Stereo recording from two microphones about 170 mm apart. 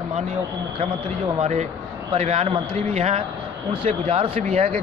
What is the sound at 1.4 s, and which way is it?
A man's voice, 45° right (ahead or behind).